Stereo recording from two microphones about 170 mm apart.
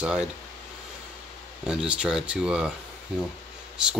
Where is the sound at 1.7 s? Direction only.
5° right (ahead or behind).